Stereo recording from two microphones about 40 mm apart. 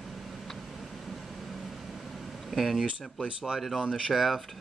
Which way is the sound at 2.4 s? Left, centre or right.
Centre.